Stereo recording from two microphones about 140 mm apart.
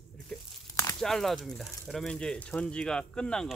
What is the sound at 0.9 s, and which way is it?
Speech, centre (ahead or behind).